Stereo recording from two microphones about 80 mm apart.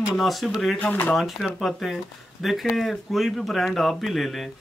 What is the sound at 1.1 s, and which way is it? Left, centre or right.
Speech, centre.